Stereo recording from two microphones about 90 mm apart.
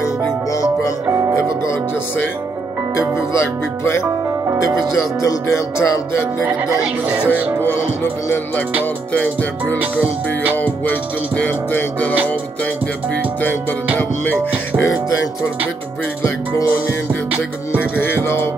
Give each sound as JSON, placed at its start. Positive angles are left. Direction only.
{"t": 0.5, "sound": "music", "side_deg": 40}
{"t": 5.2, "sound": "music", "side_deg": 30}
{"t": 6.4, "sound": "speech", "side_deg": -10}
{"t": 7.6, "sound": "music", "side_deg": 25}
{"t": 9.8, "sound": "speech", "side_deg": -15}
{"t": 10.6, "sound": "music", "side_deg": 20}
{"t": 13.9, "sound": "music", "side_deg": 20}
{"t": 14.9, "sound": "music", "side_deg": 40}
{"t": 17.7, "sound": "music", "side_deg": 20}